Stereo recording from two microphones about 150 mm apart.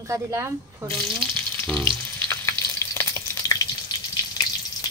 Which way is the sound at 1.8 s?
20° left (ahead or behind).